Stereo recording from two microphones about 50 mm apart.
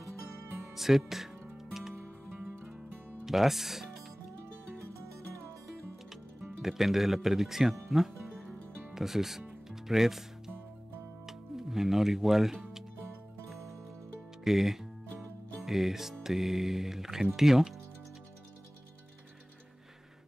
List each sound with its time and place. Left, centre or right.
0.7 s speech: centre
1.7 s music: centre
2.0 s music: right
3.3 s speech: centre
6.0 s speech: centre
7.9 s music: centre
8.9 s speech: centre
9.7 s music: centre
14.4 s speech: centre